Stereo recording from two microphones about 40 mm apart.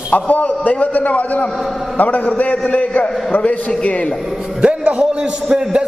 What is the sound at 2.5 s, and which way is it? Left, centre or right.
A man's voice, left.